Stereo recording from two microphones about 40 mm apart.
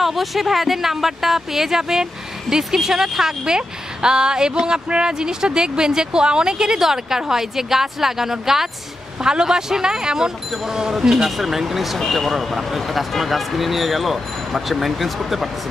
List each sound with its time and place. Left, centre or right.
0.0 s speech: centre